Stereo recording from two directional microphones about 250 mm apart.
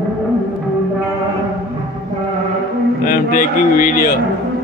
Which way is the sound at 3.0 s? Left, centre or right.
Left.